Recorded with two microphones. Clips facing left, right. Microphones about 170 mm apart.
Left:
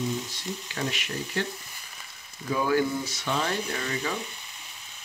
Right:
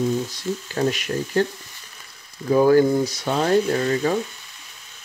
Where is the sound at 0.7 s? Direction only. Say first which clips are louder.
Right 10 dB; 40° right (ahead or behind).